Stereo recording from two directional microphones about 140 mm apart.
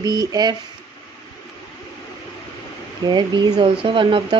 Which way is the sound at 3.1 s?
30° right (ahead or behind).